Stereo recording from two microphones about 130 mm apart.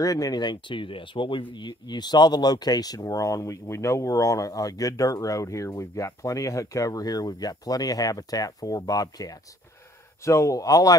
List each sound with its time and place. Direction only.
0.0 s speech: 30° left (ahead or behind)